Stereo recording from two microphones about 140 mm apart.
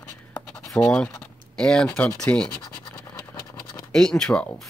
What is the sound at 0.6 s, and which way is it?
Speech, 5° left (ahead or behind).